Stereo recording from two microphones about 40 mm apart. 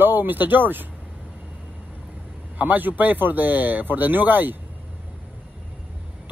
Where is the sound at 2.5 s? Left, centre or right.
Right.